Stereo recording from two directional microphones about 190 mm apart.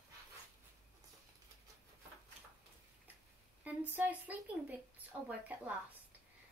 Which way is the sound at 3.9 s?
10° right (ahead or behind).